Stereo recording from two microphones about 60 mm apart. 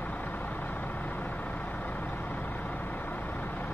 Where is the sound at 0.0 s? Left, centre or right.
Left.